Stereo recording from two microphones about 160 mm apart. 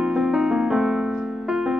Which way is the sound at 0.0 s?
5° right (ahead or behind).